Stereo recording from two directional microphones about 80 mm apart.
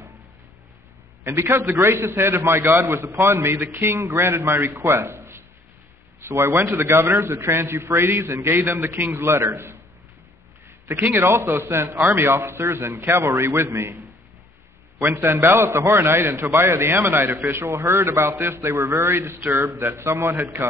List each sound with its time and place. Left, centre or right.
1.2 s a man's voice: right
10.9 s a man's voice: right
15.0 s a man's voice: right